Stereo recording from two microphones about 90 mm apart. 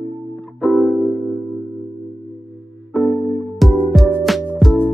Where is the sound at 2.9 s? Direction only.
5° left (ahead or behind).